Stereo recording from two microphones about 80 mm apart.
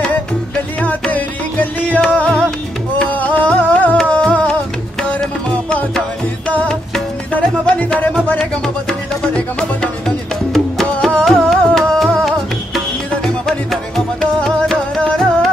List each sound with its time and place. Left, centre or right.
0.7 s music: centre
7.3 s music: centre